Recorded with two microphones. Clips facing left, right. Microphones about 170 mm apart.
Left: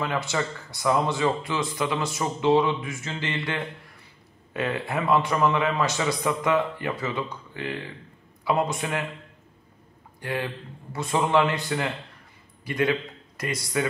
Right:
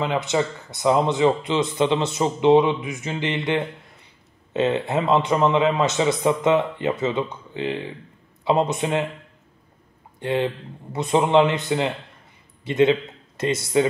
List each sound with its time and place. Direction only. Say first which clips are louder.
0.0 s a man's voice: right 5 dB; 20° right (ahead or behind)
10.2 s a man's voice: right 7 dB; 25° right (ahead or behind)